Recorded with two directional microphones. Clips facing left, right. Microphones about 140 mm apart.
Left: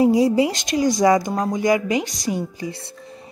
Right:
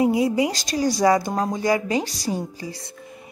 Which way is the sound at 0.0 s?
35° left (ahead or behind).